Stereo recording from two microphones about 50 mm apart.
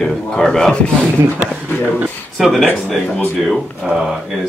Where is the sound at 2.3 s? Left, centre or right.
Centre.